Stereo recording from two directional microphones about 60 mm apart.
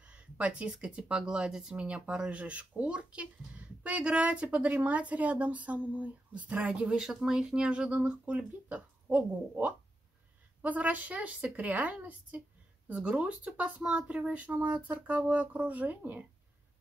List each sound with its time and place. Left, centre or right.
0.0 s speech: centre